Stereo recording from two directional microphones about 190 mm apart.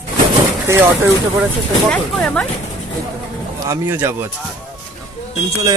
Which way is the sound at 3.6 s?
15° right (ahead or behind).